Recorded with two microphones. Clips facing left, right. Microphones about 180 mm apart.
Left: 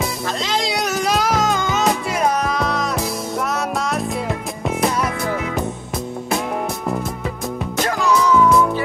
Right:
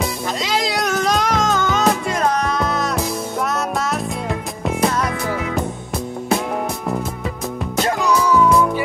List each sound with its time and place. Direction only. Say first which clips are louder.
0.4 s music: right 1 dB; 5° right (ahead or behind)
7.8 s music: even; 15° right (ahead or behind)